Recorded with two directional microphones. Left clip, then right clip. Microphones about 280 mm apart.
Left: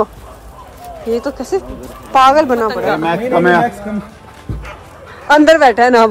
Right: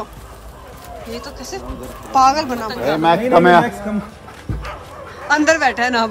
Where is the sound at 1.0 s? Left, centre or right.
Centre.